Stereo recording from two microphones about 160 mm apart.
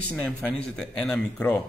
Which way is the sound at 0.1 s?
10° left (ahead or behind).